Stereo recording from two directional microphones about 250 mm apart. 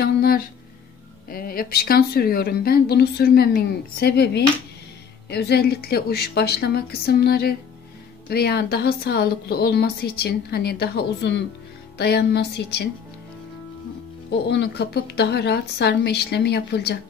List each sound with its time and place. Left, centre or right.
0.0 s a sound: left
1.3 s speech: left
14.3 s speech: left